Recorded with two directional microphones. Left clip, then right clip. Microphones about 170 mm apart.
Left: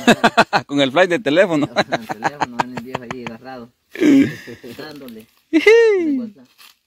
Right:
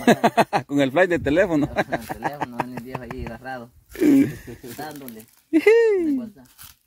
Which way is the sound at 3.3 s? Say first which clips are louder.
Right 1 dB; 20° right (ahead or behind).